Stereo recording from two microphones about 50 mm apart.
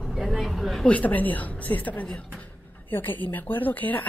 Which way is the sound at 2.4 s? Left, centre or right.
Left.